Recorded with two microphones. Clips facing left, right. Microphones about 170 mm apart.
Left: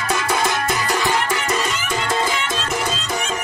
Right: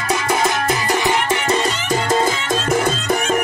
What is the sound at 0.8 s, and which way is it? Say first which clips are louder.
Music: right 3 dB; 20° right (ahead or behind).